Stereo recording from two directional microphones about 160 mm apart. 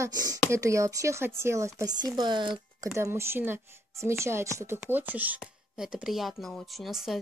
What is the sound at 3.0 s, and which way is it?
A woman's voice, 15° right (ahead or behind).